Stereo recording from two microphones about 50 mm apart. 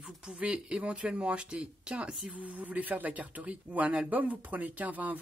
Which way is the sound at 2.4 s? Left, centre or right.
Right.